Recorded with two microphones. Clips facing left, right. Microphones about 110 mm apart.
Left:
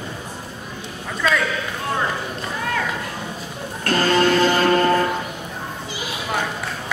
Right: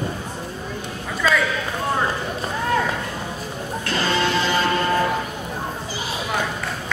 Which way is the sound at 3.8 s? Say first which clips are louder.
Left 5 dB; 50° left (ahead or behind).